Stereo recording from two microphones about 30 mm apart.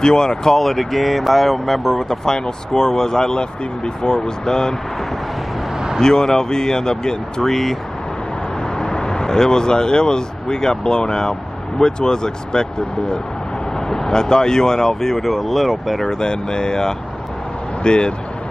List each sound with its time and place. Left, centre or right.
0.0 s speech: left
0.6 s speech: centre; by 4.7 s left
5.9 s speech: left
7.4 s speech: centre
8.7 s speech: left
13.7 s speech: centre
16.1 s speech: left